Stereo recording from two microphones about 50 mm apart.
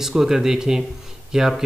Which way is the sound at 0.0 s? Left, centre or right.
Centre.